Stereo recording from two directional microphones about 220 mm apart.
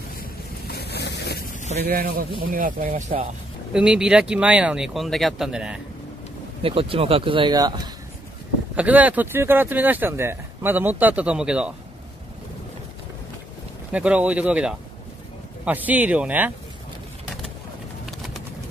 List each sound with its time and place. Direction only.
0.2 s boat: 45° left (ahead or behind)
1.8 s speech: 45° right (ahead or behind)
3.7 s speech: 5° right (ahead or behind)
6.6 s speech: 25° right (ahead or behind)
8.7 s speech: 5° right (ahead or behind)
13.9 s speech: 5° right (ahead or behind)